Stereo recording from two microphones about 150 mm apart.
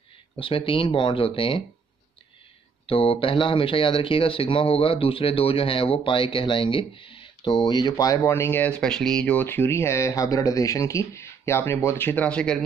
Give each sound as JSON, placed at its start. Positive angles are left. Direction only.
{"t": 0.4, "sound": "speech", "side_deg": 35}
{"t": 2.9, "sound": "speech", "side_deg": 40}